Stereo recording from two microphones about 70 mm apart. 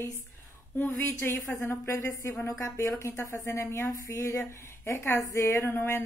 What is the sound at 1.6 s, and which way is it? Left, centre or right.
Speech, left.